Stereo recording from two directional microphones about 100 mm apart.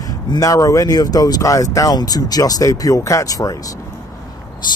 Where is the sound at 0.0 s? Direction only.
35° left (ahead or behind).